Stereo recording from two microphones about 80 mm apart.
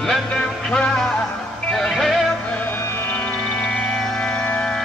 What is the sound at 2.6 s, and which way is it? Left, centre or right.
Music, left.